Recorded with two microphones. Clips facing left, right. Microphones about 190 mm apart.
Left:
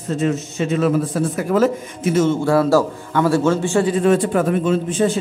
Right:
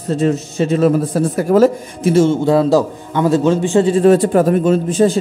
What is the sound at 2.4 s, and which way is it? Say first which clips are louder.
A man's voice: right 3 dB; 20° right (ahead or behind).